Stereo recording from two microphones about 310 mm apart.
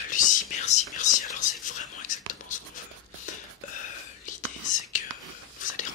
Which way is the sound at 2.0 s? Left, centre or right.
Left.